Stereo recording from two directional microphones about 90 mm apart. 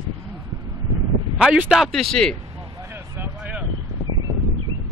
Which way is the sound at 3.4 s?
15° right (ahead or behind).